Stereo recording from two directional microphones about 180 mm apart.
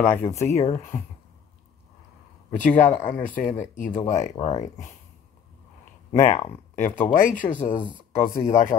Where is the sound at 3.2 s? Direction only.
45° left (ahead or behind).